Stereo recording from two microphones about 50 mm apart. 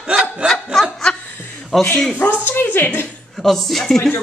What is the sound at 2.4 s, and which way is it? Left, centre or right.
Speech, left.